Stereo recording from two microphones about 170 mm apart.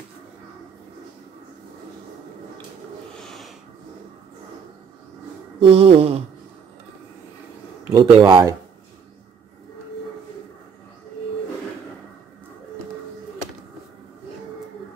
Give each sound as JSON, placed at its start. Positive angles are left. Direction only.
{"t": 3.2, "sound": "snort", "side_deg": 0}
{"t": 5.6, "sound": "speech", "side_deg": -35}
{"t": 7.9, "sound": "speech", "side_deg": -25}